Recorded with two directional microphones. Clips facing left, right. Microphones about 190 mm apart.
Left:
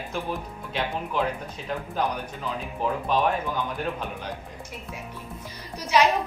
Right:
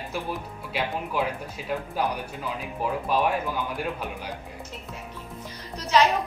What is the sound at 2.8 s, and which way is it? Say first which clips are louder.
Speech: left 1 dB; 10° right (ahead or behind).